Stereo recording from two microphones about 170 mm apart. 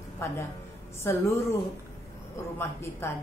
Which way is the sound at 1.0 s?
15° left (ahead or behind).